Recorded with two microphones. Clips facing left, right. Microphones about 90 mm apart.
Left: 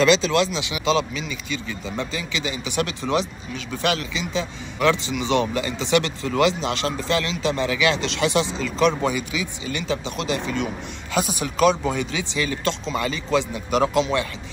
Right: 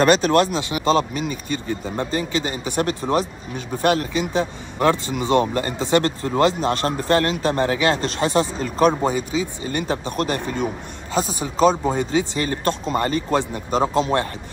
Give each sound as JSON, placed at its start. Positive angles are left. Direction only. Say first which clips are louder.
{"t": 0.0, "sound": "speech", "louder": "right 2 dB", "side_deg": -50}
{"t": 11.5, "sound": "speech", "louder": "right 2 dB", "side_deg": -30}